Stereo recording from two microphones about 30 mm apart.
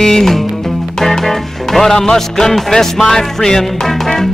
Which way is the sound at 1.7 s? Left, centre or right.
Centre.